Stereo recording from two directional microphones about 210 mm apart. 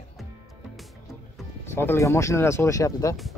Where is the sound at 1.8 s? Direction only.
10° left (ahead or behind).